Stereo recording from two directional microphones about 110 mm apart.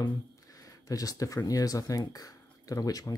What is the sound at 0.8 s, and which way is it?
Speech, 35° left (ahead or behind).